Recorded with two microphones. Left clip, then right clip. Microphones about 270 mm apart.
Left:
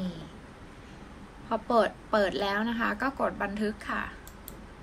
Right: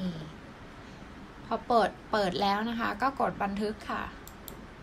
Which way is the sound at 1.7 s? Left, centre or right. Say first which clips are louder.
Left 1 dB; centre.